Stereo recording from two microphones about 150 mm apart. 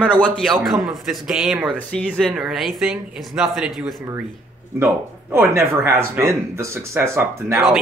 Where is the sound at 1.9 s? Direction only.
5° left (ahead or behind).